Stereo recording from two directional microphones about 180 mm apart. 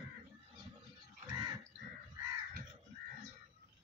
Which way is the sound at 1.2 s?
20° right (ahead or behind).